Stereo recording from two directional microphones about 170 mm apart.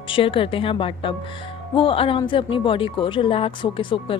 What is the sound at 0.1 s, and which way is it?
A woman's voice, 30° left (ahead or behind).